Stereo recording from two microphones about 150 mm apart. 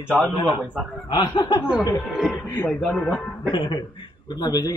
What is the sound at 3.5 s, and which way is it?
A man's voice, 30° left (ahead or behind).